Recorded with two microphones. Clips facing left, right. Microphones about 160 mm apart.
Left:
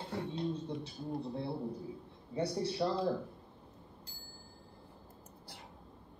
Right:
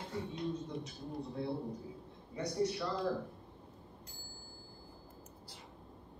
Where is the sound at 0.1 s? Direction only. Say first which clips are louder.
Left 2 dB; 65° left (ahead or behind).